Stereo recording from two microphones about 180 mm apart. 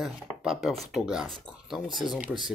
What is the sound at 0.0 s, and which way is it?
Speech, centre (ahead or behind).